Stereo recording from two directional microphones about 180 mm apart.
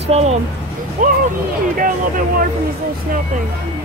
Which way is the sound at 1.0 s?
45° right (ahead or behind).